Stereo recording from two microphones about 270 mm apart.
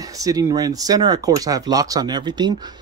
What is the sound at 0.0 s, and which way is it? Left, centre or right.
A man's voice, centre.